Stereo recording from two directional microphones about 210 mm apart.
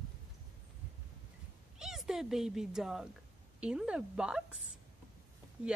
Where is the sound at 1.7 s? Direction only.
Centre (ahead or behind).